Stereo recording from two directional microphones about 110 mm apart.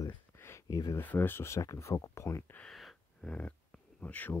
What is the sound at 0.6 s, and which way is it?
Speech, 30° left (ahead or behind).